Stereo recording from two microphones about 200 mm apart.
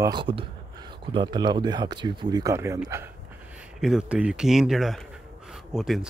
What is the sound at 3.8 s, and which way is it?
Speech, 5° right (ahead or behind).